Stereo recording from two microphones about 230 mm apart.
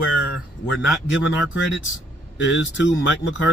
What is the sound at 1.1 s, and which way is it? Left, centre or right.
Speech, left.